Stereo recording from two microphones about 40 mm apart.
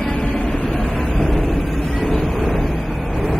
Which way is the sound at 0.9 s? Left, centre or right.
Centre.